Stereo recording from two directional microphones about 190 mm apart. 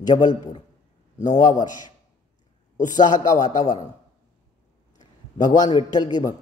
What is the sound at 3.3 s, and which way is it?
Speech, 20° left (ahead or behind).